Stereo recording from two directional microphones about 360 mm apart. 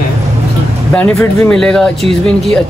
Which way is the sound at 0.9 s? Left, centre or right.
Centre.